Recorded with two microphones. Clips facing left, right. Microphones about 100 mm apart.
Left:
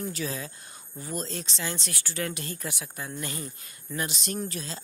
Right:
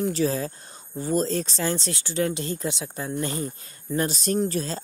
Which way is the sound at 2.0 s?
25° right (ahead or behind).